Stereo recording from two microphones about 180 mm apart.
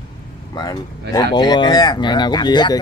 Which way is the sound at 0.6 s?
20° left (ahead or behind).